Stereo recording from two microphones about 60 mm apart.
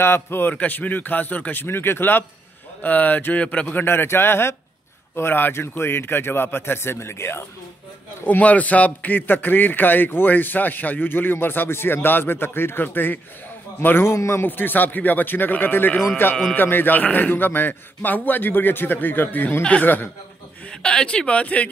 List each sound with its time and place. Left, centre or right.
0.0 s a man's voice: left
8.3 s a man's voice: left
20.7 s speech: centre